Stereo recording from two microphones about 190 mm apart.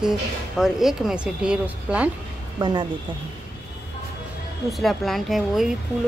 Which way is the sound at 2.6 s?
25° right (ahead or behind).